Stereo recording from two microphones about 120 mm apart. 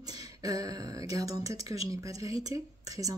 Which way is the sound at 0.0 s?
30° right (ahead or behind).